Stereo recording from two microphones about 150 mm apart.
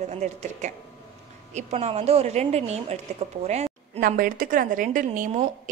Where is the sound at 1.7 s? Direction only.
45° right (ahead or behind).